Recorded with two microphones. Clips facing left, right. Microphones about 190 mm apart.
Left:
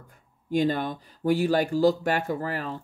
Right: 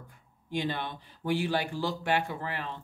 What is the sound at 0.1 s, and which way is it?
Speech, 45° left (ahead or behind).